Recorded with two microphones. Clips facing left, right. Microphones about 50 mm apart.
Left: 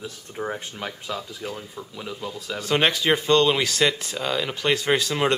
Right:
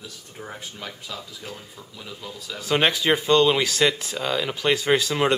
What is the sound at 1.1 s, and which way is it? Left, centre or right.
Speech, centre.